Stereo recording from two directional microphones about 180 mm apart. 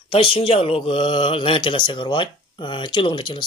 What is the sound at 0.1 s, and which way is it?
Speech, 30° left (ahead or behind).